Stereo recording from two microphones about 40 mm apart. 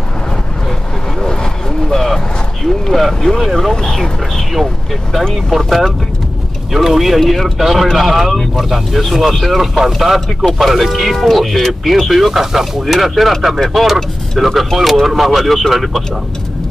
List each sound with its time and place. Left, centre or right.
1.2 s vehicle: centre
2.0 s vehicle: centre
3.4 s speech: centre
3.7 s a sound: centre
5.5 s speech: centre